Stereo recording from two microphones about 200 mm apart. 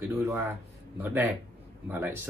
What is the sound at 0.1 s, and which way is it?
A man's voice, 15° right (ahead or behind).